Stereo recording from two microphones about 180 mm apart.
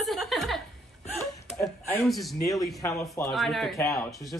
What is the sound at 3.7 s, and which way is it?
Speech, 15° left (ahead or behind).